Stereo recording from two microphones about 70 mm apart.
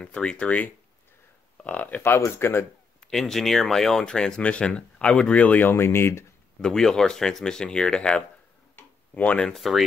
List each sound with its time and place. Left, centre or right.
0.0 s speech: centre
2.0 s speech: left
3.1 s speech: centre; by 6.2 s left
6.6 s speech: centre
8.7 s tick-tock: left
9.4 s speech: centre